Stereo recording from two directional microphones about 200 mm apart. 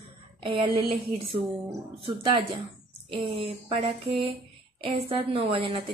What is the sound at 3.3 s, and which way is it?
A woman's voice, 25° right (ahead or behind).